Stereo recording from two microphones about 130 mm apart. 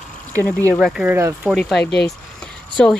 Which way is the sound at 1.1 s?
15° right (ahead or behind).